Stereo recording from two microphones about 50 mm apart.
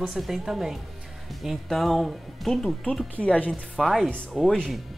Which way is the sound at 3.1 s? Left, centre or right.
Left.